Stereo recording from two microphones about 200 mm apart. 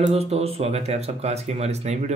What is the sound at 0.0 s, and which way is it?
A man's voice, 30° right (ahead or behind).